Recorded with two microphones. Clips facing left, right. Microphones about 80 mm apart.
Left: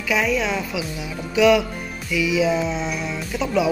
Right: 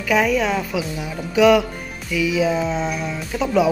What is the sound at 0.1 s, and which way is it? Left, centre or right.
A woman's voice, right.